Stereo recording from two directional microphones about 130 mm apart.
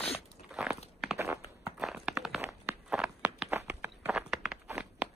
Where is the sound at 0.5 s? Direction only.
5° right (ahead or behind).